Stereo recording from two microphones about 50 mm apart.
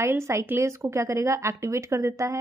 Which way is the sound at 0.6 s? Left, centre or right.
Right.